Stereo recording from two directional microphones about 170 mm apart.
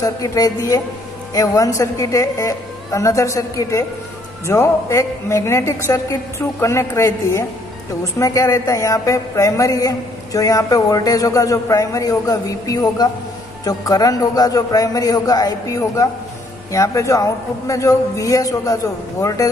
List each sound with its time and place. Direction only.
0.0 s a woman's voice: 20° left (ahead or behind)